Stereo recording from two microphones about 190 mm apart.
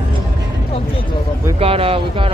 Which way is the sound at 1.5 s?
30° right (ahead or behind).